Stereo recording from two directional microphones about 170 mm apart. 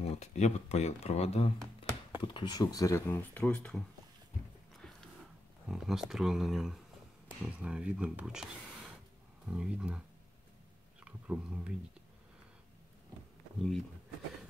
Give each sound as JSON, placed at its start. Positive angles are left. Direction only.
{"t": 0.0, "sound": "speech", "side_deg": 40}
{"t": 2.2, "sound": "speech", "side_deg": 25}
{"t": 5.7, "sound": "speech", "side_deg": 0}
{"t": 9.5, "sound": "speech", "side_deg": -5}
{"t": 11.1, "sound": "speech", "side_deg": -5}
{"t": 13.6, "sound": "speech", "side_deg": 5}